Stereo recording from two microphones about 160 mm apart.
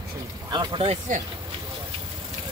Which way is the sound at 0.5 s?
25° right (ahead or behind).